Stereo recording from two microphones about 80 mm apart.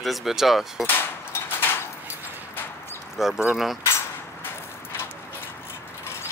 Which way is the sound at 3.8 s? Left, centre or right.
Left.